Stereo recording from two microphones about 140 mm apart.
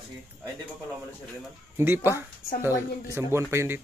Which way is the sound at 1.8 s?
20° right (ahead or behind).